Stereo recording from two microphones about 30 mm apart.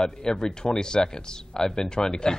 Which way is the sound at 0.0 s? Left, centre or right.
Left.